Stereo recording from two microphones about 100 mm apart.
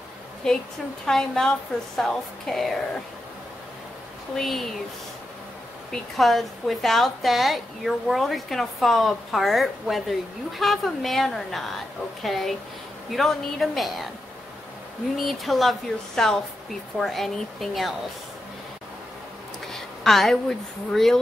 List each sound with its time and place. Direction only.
0.4 s a woman's voice: 5° left (ahead or behind)
4.4 s a woman's voice: centre (ahead or behind)
5.9 s a woman's voice: centre (ahead or behind)
15.2 s a woman's voice: centre (ahead or behind)
19.6 s speech: centre (ahead or behind)